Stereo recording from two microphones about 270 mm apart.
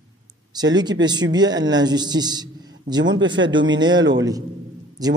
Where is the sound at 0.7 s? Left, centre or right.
Centre.